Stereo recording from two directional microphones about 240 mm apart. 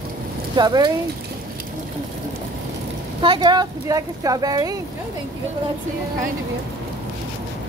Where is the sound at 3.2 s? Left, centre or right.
Centre.